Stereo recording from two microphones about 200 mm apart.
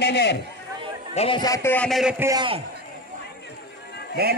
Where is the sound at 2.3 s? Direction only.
20° right (ahead or behind).